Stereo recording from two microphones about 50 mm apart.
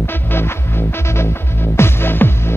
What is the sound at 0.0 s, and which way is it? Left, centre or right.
Music, left.